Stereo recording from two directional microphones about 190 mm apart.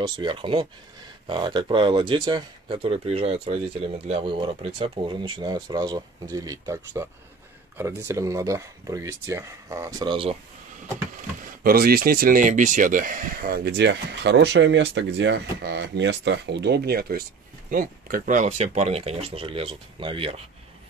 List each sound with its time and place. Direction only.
0.0 s speech: 25° right (ahead or behind)
11.1 s speech: 50° right (ahead or behind); by 20.4 s 30° right (ahead or behind)